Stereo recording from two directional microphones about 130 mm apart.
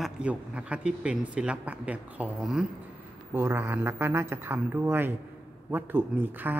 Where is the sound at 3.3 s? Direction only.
15° right (ahead or behind).